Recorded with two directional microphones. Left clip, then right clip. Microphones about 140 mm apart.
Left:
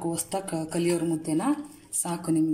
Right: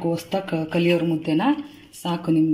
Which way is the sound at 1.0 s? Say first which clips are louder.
Right 5 dB; 15° left (ahead or behind).